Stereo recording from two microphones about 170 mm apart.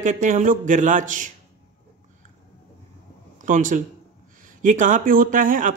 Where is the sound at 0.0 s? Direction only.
50° right (ahead or behind).